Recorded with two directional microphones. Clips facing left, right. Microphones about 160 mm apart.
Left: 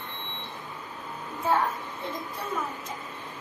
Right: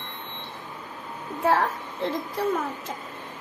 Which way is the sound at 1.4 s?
80° right.